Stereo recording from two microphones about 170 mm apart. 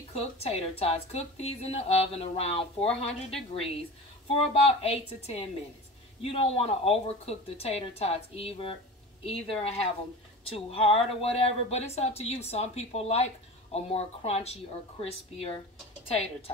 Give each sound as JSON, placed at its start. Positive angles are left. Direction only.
{"t": 0.1, "sound": "speech", "side_deg": 35}
{"t": 4.4, "sound": "speech", "side_deg": 35}